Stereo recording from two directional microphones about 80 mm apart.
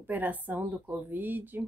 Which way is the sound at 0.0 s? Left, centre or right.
Right.